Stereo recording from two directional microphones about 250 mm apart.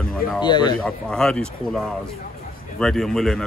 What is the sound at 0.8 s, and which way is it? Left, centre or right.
Speech, centre.